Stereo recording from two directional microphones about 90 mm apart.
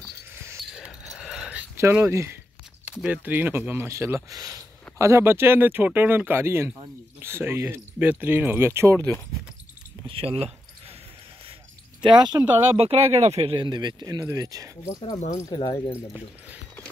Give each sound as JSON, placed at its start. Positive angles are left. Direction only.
{"t": 0.7, "sound": "a sound", "side_deg": -5}
{"t": 2.0, "sound": "speech", "side_deg": -30}
{"t": 2.9, "sound": "speech", "side_deg": -15}
{"t": 4.3, "sound": "speech", "side_deg": -40}
{"t": 8.9, "sound": "speech", "side_deg": 20}
{"t": 10.0, "sound": "speech", "side_deg": -90}
{"t": 12.0, "sound": "speech", "side_deg": -55}
{"t": 12.7, "sound": "speech", "side_deg": -90}
{"t": 13.7, "sound": "speech", "side_deg": -55}
{"t": 14.2, "sound": "speech", "side_deg": -40}
{"t": 14.9, "sound": "speech", "side_deg": 40}